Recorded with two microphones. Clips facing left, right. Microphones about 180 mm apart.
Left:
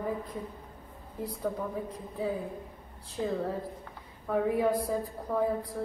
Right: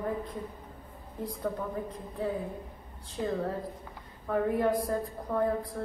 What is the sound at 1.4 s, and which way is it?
A woman's voice, 5° left (ahead or behind).